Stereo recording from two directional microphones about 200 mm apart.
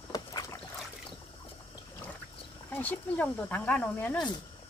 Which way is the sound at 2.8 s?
5° left (ahead or behind).